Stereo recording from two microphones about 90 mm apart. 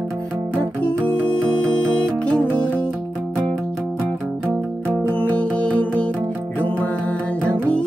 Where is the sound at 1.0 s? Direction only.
15° left (ahead or behind).